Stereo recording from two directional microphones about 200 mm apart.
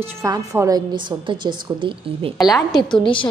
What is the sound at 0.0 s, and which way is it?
A woman's voice, 15° right (ahead or behind).